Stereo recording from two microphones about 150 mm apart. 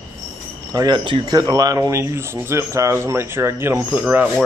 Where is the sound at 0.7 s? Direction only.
25° right (ahead or behind).